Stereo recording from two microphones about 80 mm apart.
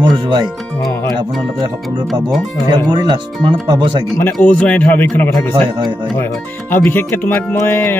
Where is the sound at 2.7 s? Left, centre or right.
Right.